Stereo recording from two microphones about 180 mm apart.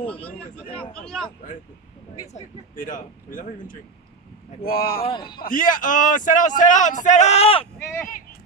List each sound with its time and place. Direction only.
0.0 s speech: 5° left (ahead or behind)
2.3 s a man's voice: 45° left (ahead or behind)
5.0 s a man's voice: 25° left (ahead or behind)
5.4 s a man's voice: 50° left (ahead or behind)
7.8 s speech: 15° left (ahead or behind)